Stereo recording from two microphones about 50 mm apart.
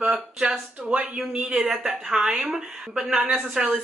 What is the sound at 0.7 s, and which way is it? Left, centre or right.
Speech, right.